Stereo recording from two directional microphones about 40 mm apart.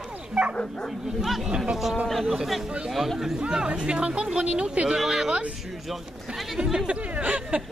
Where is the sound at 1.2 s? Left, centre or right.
Centre.